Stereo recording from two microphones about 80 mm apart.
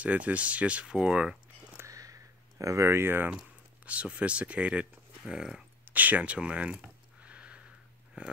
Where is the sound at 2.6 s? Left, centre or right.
Right.